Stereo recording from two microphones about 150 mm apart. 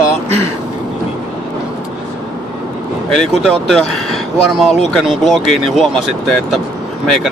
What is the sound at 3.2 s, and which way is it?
Speech, centre (ahead or behind).